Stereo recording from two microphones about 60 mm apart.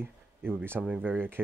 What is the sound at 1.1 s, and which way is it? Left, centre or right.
Speech, right.